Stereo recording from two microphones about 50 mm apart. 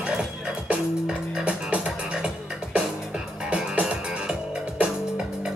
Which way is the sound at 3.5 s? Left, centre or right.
Right.